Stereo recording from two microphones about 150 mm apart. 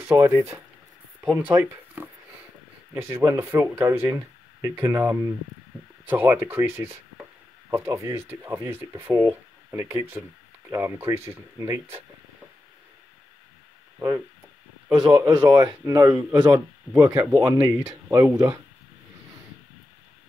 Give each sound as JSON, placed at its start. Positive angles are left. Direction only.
{"t": 0.0, "sound": "speech", "side_deg": -15}
{"t": 13.9, "sound": "a man's voice", "side_deg": -20}